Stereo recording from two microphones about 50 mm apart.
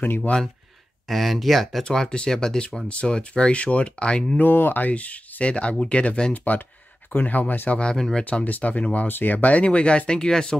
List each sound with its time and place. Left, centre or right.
0.0 s speech: left
1.0 s speech: centre
1.9 s speech: centre
4.4 s speech: left
4.8 s speech: left
6.3 s speech: left
7.7 s speech: centre
8.5 s speech: left; by 10.6 s centre